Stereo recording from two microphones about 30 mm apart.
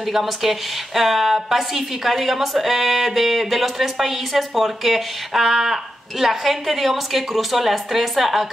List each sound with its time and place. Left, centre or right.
0.0 s a woman's voice: centre